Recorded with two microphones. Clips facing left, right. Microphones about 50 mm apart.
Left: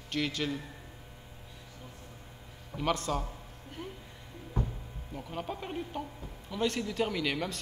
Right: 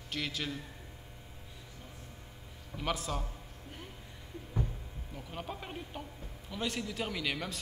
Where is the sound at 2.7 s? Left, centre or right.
Centre.